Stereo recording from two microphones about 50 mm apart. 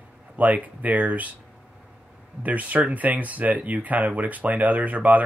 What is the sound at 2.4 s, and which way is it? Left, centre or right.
Speech, right.